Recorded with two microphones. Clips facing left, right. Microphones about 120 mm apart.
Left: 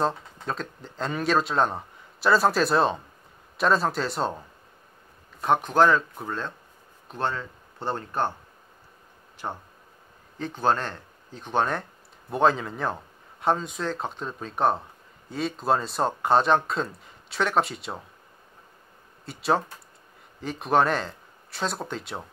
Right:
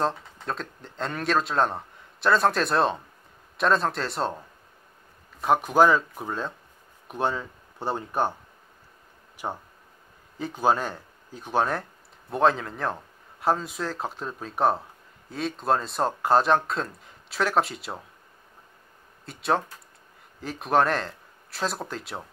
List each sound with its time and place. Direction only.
0.0 s a man's voice: centre (ahead or behind)
9.4 s a man's voice: 15° right (ahead or behind)
19.2 s a man's voice: centre (ahead or behind)